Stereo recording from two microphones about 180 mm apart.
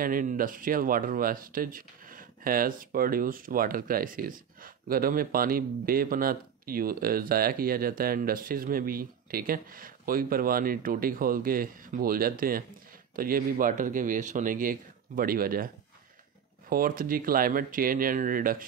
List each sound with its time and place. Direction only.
0.0 s speech: 50° right (ahead or behind)